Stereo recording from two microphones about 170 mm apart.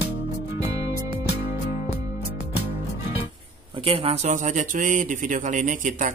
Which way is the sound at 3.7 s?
30° right (ahead or behind).